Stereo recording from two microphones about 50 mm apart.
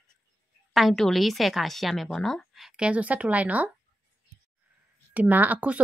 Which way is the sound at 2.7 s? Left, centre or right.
Right.